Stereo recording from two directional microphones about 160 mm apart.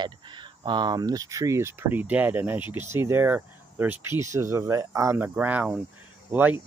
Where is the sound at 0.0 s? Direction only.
30° right (ahead or behind).